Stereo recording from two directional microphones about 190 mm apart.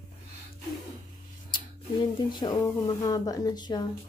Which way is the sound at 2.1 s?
25° left (ahead or behind).